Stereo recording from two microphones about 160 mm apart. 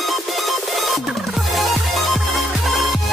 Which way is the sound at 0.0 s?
Centre (ahead or behind).